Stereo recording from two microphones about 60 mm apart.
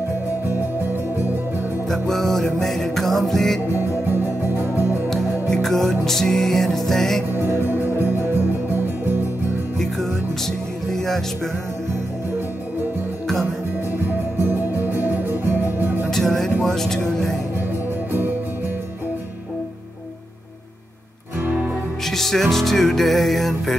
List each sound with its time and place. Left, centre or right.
0.5 s music: right
1.9 s music: centre
4.0 s music: right
5.1 s music: centre
7.3 s music: right
9.8 s music: centre
13.9 s music: right
16.1 s music: centre
16.6 s vehicle: centre
22.0 s music: centre